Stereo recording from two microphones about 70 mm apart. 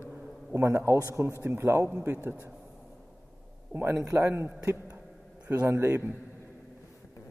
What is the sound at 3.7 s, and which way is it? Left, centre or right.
Speech, right.